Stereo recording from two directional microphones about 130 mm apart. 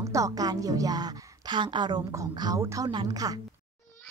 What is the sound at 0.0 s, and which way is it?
Speech, 25° right (ahead or behind).